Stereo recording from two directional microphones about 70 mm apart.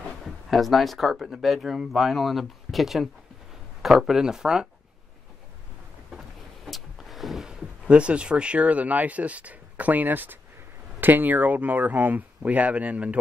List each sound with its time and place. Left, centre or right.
0.2 s speech: centre
6.1 s a sound: centre
7.8 s speech: centre